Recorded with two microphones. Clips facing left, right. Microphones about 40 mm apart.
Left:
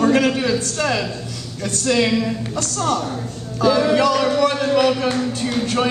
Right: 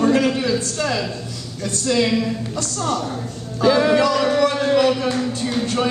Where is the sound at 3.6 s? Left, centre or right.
Right.